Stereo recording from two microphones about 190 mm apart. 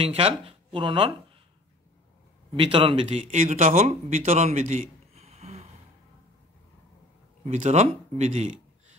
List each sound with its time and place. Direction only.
0.0 s speech: 30° right (ahead or behind)
2.5 s speech: 25° right (ahead or behind)
7.4 s speech: 40° right (ahead or behind)